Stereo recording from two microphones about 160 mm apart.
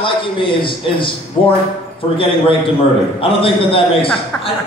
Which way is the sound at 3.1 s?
35° left (ahead or behind).